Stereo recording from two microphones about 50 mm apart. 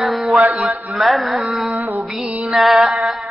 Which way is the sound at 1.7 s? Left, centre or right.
Right.